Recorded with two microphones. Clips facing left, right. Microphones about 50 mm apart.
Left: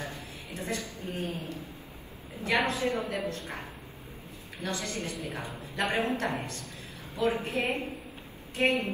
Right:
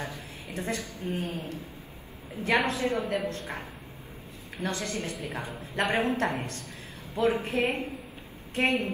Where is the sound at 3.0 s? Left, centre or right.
Centre.